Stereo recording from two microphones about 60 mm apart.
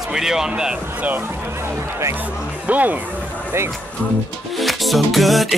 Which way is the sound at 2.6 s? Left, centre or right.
Right.